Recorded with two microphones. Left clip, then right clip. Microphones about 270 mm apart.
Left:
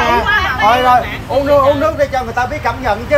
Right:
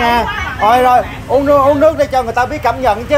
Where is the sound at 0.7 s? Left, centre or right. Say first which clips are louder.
Right 2 dB; right.